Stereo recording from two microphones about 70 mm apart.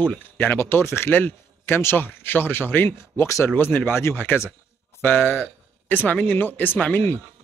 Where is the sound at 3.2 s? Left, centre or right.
Left.